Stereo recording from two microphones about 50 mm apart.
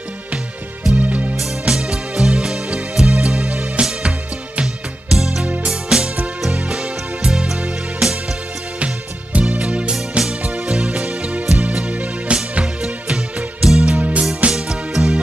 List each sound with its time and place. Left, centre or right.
0.9 s music: right
1.3 s music: centre; by 3.8 s right
5.1 s music: centre
5.4 s music: right
5.7 s music: centre
8.7 s music: right
13.9 s music: right
14.5 s music: centre